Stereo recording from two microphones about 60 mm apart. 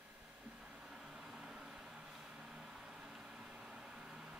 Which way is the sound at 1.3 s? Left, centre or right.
Centre.